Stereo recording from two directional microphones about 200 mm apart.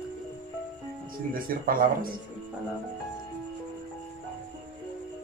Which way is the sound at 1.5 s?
45° right (ahead or behind).